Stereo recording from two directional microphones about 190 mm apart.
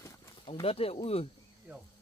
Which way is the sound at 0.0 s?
15° left (ahead or behind).